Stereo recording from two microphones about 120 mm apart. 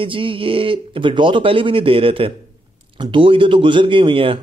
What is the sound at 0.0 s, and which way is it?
Speech, 50° right (ahead or behind).